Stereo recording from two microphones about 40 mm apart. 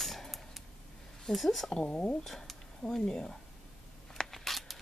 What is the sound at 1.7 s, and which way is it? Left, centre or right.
Speech, centre.